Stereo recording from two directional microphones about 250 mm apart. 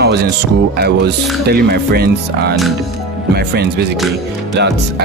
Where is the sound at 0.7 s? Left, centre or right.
Right.